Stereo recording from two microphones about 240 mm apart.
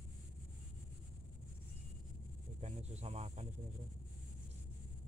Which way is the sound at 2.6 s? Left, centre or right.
Right.